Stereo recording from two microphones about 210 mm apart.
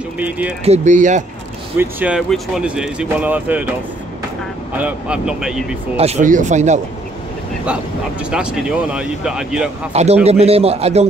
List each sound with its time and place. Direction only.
0.2 s speech: 5° right (ahead or behind)
0.7 s speech: 35° right (ahead or behind)
1.8 s speech: 5° right (ahead or behind)
4.7 s speech: 5° right (ahead or behind)
5.9 s speech: 30° right (ahead or behind)
7.6 s speech: 5° right (ahead or behind)
10.2 s a man's voice: 30° right (ahead or behind)